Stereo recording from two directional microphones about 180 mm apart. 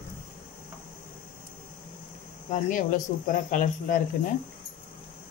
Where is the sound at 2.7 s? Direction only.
45° left (ahead or behind).